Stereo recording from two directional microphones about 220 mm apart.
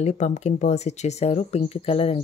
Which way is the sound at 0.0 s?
30° left (ahead or behind).